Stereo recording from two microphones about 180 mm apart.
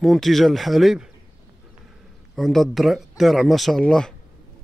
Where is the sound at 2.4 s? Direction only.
Centre (ahead or behind).